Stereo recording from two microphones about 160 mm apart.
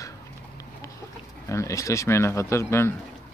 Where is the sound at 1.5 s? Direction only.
20° left (ahead or behind).